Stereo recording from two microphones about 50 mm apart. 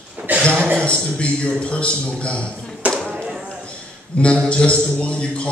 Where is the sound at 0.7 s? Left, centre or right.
Centre.